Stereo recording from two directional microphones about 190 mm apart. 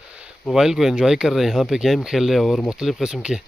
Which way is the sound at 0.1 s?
5° right (ahead or behind).